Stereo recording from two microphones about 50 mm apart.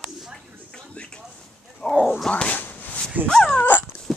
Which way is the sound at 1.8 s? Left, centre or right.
Left.